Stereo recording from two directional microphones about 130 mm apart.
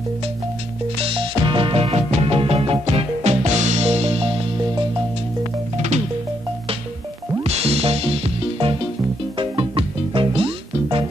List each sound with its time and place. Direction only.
0.9 s music: 45° right (ahead or behind)
7.4 s music: 55° right (ahead or behind)